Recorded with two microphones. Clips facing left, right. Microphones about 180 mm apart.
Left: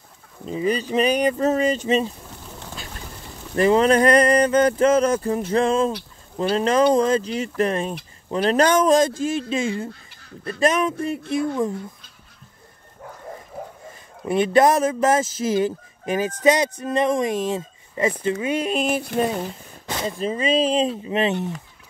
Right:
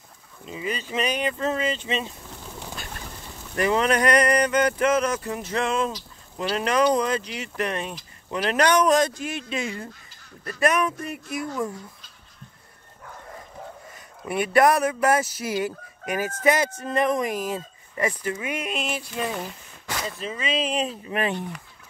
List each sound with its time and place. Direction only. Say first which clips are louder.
0.5 s speech: left 8 dB; 35° left (ahead or behind)
3.5 s fowl: left 6 dB; 30° left (ahead or behind)
5.5 s speech: left 5 dB; 30° left (ahead or behind)
8.3 s fowl: left 4 dB; 30° left (ahead or behind)
14.2 s fowl: left 3 dB; 25° left (ahead or behind)
18.9 s speech: left 7 dB; 45° left (ahead or behind)
19.9 s fowl: left 6 dB; 30° left (ahead or behind)